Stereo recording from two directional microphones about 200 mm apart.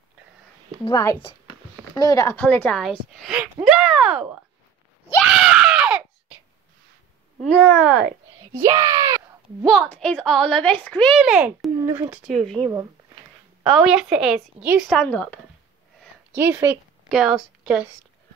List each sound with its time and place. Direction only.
0.8 s speech: 20° left (ahead or behind); by 3.4 s centre (ahead or behind)
3.6 s a sound: centre (ahead or behind)
5.2 s screaming: 5° right (ahead or behind)
8.5 s a sound: 15° right (ahead or behind)
9.7 s a woman's voice: centre (ahead or behind)
12.3 s a woman's voice: centre (ahead or behind)
13.7 s a woman's voice: centre (ahead or behind)
16.3 s a woman's voice: 10° right (ahead or behind)